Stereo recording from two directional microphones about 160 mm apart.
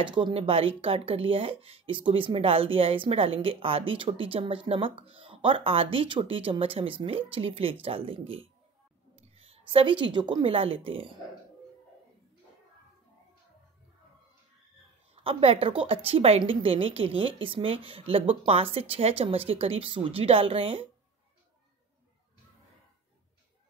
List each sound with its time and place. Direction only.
0.0 s a woman's voice: 30° right (ahead or behind)
15.2 s speech: 35° right (ahead or behind)